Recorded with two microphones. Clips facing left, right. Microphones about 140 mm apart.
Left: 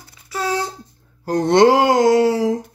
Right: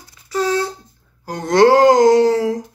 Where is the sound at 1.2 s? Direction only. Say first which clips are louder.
Left 8 dB; 45° left (ahead or behind).